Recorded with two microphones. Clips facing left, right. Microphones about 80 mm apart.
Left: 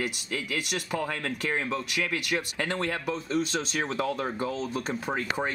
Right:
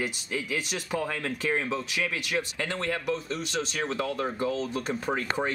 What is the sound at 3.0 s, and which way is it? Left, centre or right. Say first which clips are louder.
Speech: left 2 dB; left.